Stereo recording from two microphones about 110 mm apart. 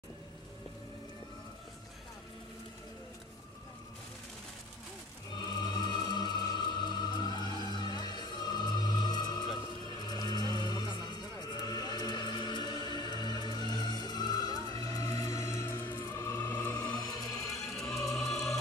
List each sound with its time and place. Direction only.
5.3 s music: 40° left (ahead or behind)
10.0 s vehicle: 40° left (ahead or behind)
17.6 s music: 5° left (ahead or behind)